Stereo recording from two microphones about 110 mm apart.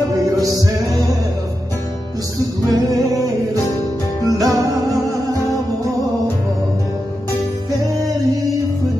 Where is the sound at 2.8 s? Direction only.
30° right (ahead or behind).